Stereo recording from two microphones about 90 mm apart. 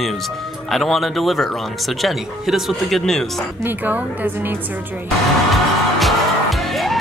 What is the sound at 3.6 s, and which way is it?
Speech, 20° right (ahead or behind).